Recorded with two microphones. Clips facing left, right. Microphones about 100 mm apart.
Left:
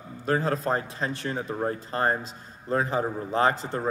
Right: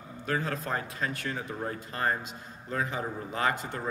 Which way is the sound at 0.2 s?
35° left (ahead or behind).